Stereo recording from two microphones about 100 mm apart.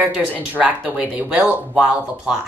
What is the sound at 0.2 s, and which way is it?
A woman's voice, 10° right (ahead or behind).